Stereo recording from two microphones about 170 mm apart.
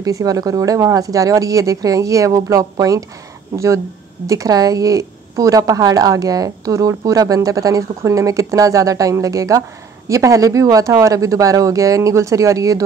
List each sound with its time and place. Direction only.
0.0 s a woman's voice: 20° right (ahead or behind)